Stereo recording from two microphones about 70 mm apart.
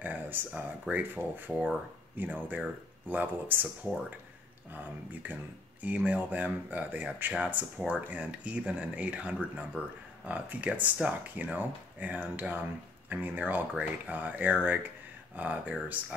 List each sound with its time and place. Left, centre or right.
0.0 s a sound: right
0.5 s speech: centre
4.6 s speech: right